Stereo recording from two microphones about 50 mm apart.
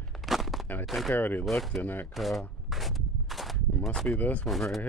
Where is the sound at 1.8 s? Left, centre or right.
Left.